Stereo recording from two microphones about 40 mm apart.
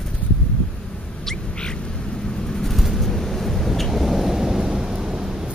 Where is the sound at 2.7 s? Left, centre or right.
Centre.